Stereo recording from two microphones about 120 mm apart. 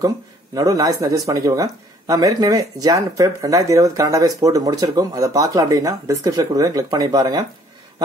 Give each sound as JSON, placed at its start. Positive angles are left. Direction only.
{"t": 0.6, "sound": "speech", "side_deg": -30}